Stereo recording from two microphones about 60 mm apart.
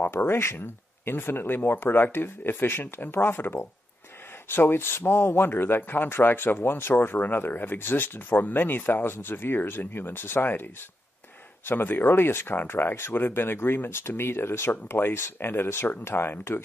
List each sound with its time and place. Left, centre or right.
0.1 s a man's voice: left